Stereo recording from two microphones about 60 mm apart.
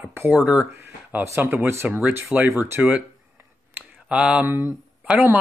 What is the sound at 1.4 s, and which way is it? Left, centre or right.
Speech, right.